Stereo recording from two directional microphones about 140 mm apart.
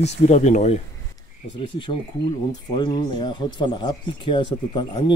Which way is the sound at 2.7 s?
30° left (ahead or behind).